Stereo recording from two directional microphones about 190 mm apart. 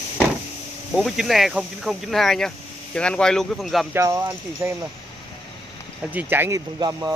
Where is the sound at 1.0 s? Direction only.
Centre (ahead or behind).